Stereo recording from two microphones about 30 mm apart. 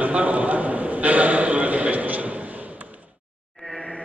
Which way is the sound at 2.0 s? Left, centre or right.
Right.